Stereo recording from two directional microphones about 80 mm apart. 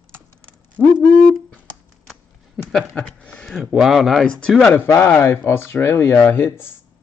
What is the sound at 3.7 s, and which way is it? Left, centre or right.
Speech, centre.